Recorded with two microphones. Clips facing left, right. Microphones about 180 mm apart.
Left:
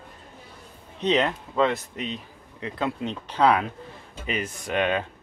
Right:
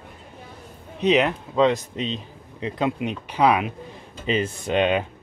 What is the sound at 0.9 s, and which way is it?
Speech, 10° right (ahead or behind).